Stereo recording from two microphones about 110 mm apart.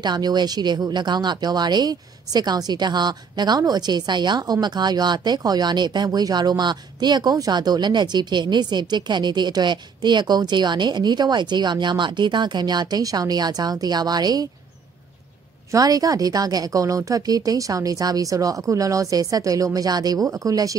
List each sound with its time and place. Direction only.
0.0 s speech: 40° right (ahead or behind)
15.7 s speech: 35° right (ahead or behind)